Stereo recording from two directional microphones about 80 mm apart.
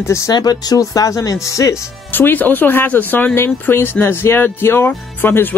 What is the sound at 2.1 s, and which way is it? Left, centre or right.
Speech, left.